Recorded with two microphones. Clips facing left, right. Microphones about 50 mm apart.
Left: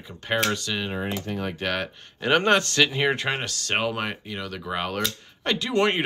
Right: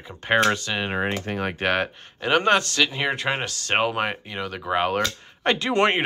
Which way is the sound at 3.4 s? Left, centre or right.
Centre.